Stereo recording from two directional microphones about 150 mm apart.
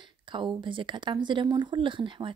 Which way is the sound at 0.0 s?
35° right (ahead or behind).